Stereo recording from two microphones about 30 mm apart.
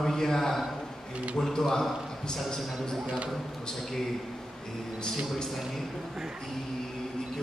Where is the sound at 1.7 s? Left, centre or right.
Centre.